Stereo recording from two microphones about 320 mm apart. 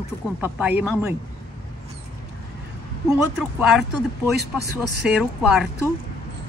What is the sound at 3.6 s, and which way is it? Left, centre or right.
Speech, centre.